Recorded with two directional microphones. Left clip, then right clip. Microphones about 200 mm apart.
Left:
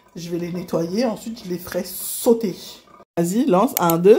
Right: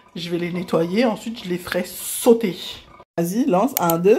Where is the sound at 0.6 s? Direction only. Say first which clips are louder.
Right 3 dB; centre (ahead or behind); by 3.7 s 20° left (ahead or behind).